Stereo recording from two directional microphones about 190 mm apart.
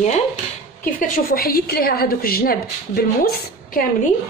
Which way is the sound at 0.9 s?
50° left (ahead or behind).